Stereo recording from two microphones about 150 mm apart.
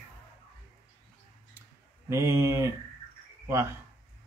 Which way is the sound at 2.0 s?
20° right (ahead or behind).